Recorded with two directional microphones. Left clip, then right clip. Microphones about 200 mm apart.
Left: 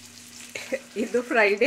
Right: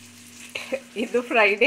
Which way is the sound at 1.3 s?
15° left (ahead or behind).